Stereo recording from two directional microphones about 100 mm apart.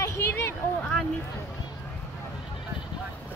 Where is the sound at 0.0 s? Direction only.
25° left (ahead or behind).